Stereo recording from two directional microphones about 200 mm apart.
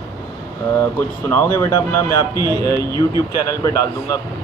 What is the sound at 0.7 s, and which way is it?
A man's voice, 10° left (ahead or behind).